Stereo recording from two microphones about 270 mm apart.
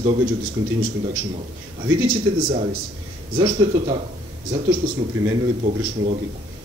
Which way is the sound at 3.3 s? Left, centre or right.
Centre.